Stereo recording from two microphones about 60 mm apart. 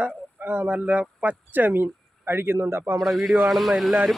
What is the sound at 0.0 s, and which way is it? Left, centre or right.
Speech, right.